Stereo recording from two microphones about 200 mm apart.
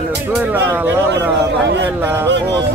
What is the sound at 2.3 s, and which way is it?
Music, 60° right (ahead or behind).